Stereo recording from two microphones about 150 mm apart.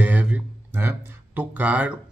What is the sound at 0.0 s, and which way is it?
Speech, 10° right (ahead or behind).